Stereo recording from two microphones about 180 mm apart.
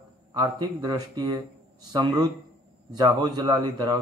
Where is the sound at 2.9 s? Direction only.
25° right (ahead or behind).